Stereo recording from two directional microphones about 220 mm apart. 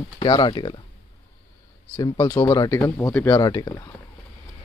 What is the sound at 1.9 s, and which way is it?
Speech, 20° left (ahead or behind).